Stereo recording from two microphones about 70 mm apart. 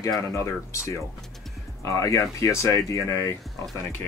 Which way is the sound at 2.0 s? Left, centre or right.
Left.